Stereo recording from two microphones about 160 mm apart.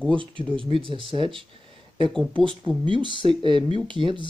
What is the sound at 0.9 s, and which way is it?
Speech, 30° right (ahead or behind).